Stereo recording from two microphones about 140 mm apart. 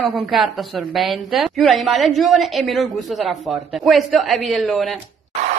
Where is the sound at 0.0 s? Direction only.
Centre (ahead or behind).